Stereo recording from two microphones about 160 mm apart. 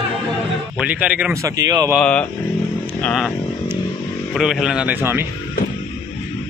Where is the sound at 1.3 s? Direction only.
20° right (ahead or behind).